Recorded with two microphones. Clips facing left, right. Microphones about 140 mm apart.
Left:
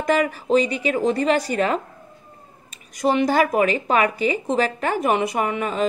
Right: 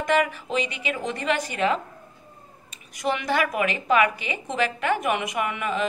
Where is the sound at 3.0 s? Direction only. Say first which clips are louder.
Left 6 dB; 35° left (ahead or behind).